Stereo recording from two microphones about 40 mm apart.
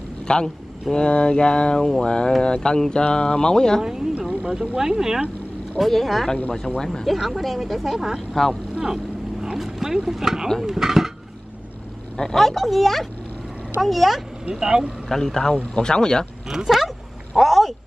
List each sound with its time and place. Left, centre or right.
0.3 s speech: left
3.8 s speech: centre
5.8 s speech: centre
6.8 s speech: centre
7.2 s speech: centre
8.8 s motorboat: centre
10.0 s speech: centre
12.4 s speech: centre
14.5 s speech: centre
15.0 s speech: centre
16.4 s speech: centre